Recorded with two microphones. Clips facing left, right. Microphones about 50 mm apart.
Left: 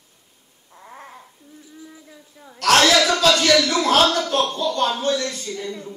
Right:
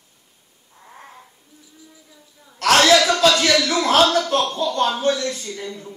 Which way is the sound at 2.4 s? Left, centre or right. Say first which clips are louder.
Left 9 dB; left.